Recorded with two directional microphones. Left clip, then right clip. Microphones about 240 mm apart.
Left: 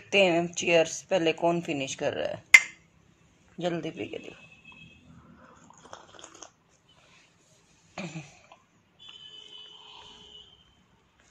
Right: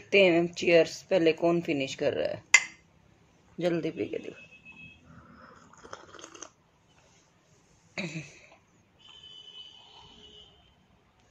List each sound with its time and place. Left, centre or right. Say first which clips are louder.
0.1 s speech: right 1 dB; right
3.5 s speech: right 2 dB; right
5.8 s a sound: right 2 dB; centre
7.9 s cough: right 3 dB; right